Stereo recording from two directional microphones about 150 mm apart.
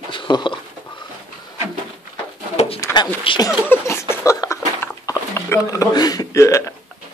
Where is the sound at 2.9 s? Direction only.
30° left (ahead or behind).